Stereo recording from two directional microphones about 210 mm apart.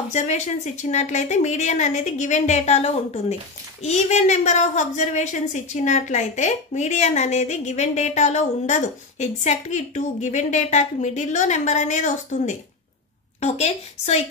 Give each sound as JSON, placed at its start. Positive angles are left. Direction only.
{"t": 0.1, "sound": "a woman's voice", "side_deg": 35}